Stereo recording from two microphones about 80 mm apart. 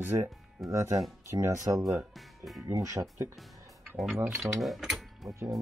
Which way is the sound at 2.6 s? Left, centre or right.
Right.